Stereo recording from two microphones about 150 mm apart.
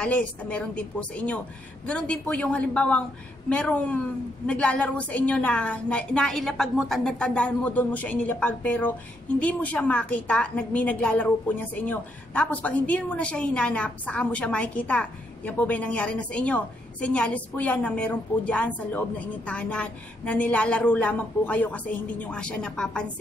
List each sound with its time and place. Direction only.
0.0 s a woman's voice: 10° left (ahead or behind)